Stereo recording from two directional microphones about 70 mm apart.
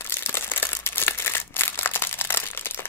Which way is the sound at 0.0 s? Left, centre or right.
Left.